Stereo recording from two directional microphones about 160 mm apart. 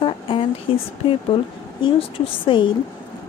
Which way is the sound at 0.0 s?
35° left (ahead or behind).